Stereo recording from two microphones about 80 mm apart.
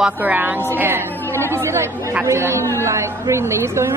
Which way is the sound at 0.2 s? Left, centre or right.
Right.